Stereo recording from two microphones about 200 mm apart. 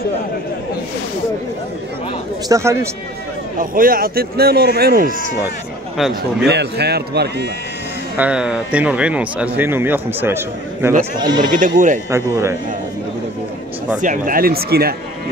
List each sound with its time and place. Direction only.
2.4 s speech: 15° right (ahead or behind)
3.5 s a man's voice: 45° right (ahead or behind)
6.4 s speech: 55° right (ahead or behind)
8.2 s speech: 5° right (ahead or behind); by 11.5 s 20° right (ahead or behind)
11.8 s speech: 40° right (ahead or behind)
12.1 s speech: 15° right (ahead or behind)
13.9 s a man's voice: 40° right (ahead or behind)